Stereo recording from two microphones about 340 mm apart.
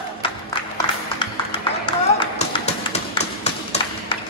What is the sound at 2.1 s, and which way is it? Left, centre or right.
Tap, centre.